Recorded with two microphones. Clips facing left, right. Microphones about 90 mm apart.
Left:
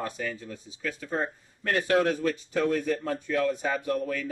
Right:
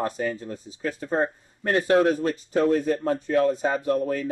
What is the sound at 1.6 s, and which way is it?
Speech, 30° right (ahead or behind).